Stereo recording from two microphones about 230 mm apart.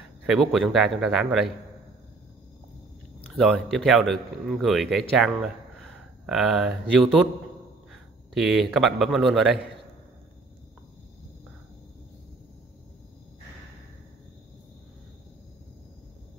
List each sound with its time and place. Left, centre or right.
0.3 s a man's voice: centre
3.4 s a man's voice: centre